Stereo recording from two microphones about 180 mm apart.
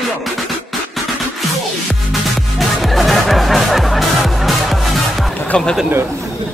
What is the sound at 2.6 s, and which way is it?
Music, centre (ahead or behind).